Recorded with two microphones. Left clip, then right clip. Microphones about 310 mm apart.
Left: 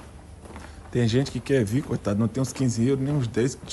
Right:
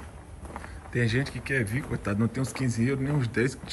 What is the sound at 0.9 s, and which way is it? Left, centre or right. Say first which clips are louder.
Speech: left 4 dB; centre.